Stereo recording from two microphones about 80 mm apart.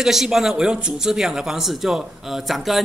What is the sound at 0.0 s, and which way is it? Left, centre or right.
A man's voice, centre.